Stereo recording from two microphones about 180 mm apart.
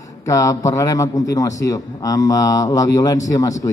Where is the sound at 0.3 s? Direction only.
20° left (ahead or behind).